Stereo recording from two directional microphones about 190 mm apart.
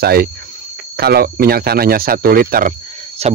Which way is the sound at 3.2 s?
35° right (ahead or behind).